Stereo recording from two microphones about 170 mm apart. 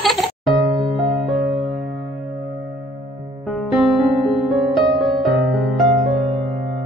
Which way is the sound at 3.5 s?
Centre (ahead or behind).